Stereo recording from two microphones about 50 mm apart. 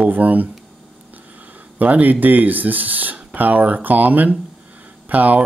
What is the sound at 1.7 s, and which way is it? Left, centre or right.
Speech, right.